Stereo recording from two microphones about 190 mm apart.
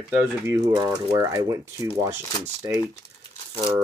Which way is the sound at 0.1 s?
10° right (ahead or behind).